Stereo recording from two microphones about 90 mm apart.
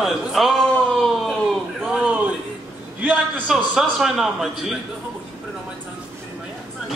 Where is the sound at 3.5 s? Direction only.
5° right (ahead or behind).